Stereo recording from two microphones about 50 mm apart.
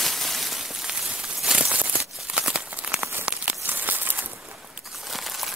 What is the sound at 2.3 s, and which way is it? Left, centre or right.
Crumpling, centre.